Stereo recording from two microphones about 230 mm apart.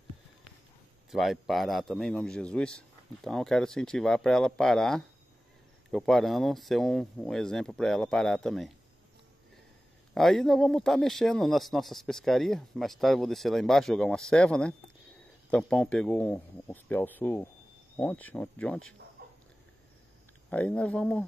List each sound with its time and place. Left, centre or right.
1.1 s speech: centre
10.1 s speech: centre
19.2 s a sound: right
20.4 s speech: centre